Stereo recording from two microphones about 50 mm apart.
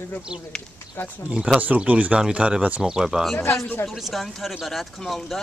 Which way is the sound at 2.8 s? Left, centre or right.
Centre.